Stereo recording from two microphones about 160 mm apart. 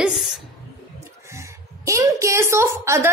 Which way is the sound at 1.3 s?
20° right (ahead or behind).